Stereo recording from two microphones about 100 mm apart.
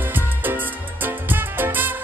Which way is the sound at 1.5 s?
20° right (ahead or behind).